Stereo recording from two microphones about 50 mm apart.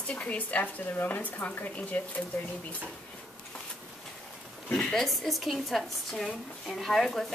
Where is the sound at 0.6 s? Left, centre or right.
Left.